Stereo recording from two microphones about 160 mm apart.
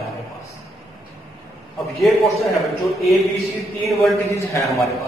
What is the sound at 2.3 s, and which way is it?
A man's voice, centre (ahead or behind).